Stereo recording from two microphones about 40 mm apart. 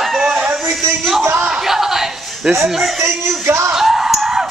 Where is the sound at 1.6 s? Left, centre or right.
Centre.